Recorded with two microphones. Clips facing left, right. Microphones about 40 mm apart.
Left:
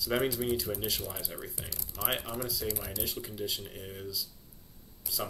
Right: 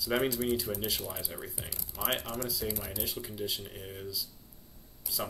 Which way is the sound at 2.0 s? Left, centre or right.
Centre.